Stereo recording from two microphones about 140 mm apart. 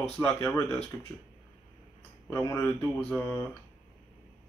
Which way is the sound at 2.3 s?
20° left (ahead or behind).